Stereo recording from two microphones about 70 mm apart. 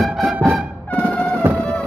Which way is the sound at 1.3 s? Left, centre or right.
Right.